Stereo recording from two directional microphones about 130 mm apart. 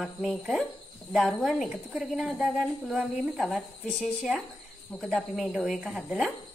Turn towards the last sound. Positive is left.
turn(degrees=0)  # may be behind; listen again after turning